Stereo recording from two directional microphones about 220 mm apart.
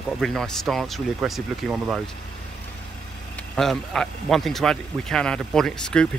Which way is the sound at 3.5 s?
Centre (ahead or behind).